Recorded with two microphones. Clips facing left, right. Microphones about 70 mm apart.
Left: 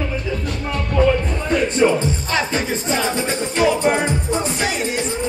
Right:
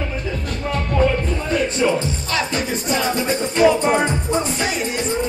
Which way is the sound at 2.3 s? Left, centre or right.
Left.